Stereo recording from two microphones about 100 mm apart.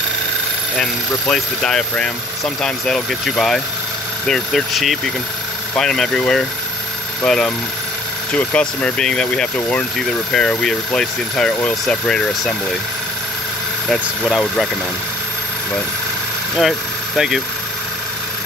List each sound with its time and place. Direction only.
1.3 s speech: 5° left (ahead or behind)
13.8 s speech: 5° left (ahead or behind)
16.5 s speech: centre (ahead or behind)